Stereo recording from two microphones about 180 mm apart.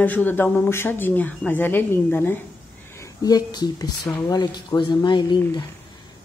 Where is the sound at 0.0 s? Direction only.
10° left (ahead or behind).